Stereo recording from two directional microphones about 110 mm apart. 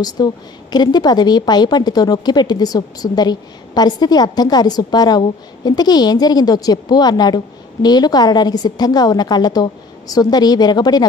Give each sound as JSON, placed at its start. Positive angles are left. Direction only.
{"t": 0.0, "sound": "a woman's voice", "side_deg": 40}